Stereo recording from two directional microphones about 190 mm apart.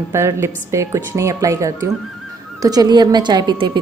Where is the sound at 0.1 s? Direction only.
15° right (ahead or behind).